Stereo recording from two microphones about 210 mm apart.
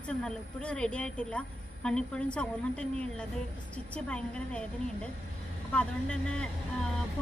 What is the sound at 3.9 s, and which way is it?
Speech, 5° left (ahead or behind).